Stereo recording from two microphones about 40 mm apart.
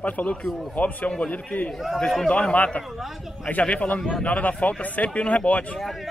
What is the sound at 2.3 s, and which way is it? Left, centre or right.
A man's voice, left.